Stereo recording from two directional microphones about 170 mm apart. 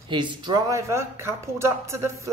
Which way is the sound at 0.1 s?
25° right (ahead or behind).